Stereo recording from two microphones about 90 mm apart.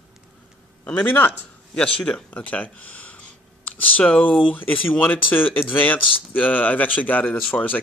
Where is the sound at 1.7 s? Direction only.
10° left (ahead or behind).